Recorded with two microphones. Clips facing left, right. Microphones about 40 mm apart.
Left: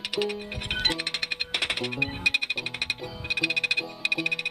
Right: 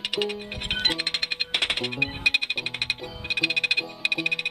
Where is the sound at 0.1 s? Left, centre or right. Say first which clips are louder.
Left 3 dB; right.